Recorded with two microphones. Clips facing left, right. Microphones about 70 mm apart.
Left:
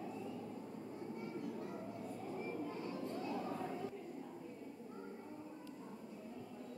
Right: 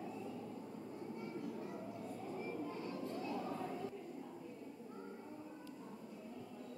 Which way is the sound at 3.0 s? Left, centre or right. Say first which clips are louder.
Even; centre.